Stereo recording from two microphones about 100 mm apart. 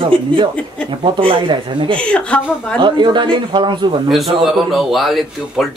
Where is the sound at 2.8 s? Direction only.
50° right (ahead or behind).